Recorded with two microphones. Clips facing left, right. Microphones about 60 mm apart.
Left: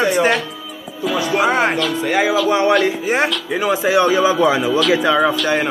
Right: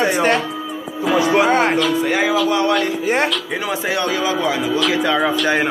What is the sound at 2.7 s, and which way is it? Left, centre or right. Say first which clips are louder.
Speech: left 2 dB; centre.